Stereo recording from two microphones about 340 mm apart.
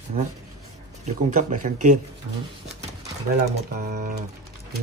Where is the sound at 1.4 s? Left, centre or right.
Right.